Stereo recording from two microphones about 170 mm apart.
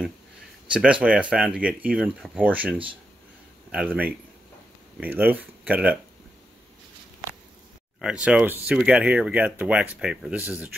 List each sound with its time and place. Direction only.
0.7 s speech: 5° right (ahead or behind)
8.0 s speech: 5° right (ahead or behind)